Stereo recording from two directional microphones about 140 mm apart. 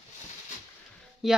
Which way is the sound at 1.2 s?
Centre (ahead or behind).